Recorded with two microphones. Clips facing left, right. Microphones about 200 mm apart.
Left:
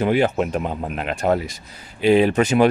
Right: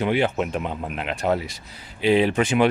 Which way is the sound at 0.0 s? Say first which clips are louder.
Left 3 dB; 45° left (ahead or behind).